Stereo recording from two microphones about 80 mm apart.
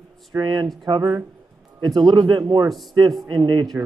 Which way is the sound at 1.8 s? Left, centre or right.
Right.